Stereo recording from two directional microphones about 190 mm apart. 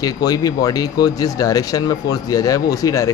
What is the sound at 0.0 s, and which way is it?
Speech, 20° left (ahead or behind).